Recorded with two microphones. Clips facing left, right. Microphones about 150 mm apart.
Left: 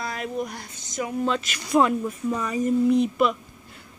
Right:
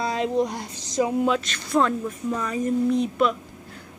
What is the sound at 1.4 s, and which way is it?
Speech, 10° left (ahead or behind).